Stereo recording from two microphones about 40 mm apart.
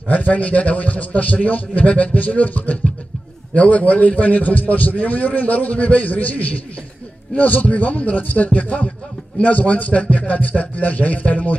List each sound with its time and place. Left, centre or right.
0.1 s a man's voice: left